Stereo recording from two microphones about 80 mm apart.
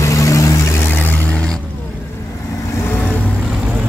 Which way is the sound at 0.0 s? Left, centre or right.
Left.